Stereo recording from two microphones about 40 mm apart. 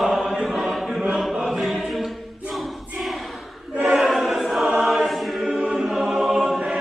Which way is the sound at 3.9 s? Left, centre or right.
Centre.